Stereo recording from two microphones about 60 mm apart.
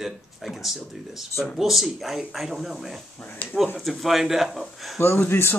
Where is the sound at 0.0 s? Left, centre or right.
Centre.